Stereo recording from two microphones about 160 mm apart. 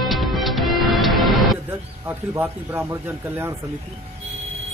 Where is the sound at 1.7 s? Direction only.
15° right (ahead or behind).